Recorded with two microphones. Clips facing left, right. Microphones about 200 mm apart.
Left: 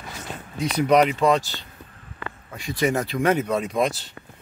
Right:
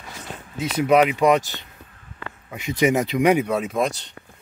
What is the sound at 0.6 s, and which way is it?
Speech, 5° right (ahead or behind).